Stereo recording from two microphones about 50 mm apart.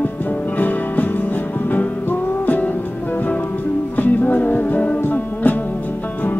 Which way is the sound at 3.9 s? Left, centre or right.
Left.